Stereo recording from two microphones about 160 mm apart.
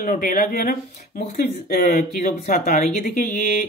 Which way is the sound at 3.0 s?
60° left (ahead or behind).